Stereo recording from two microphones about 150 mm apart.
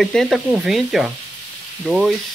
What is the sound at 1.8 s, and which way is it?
Frying, 5° right (ahead or behind).